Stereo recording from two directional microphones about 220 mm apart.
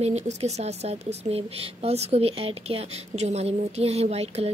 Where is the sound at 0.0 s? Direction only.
30° right (ahead or behind).